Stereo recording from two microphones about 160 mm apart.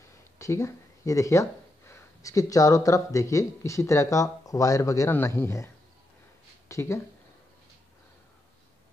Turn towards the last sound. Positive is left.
turn(degrees=15)  # may be behind; listen again after turning